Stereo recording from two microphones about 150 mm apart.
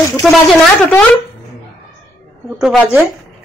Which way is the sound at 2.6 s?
Centre (ahead or behind).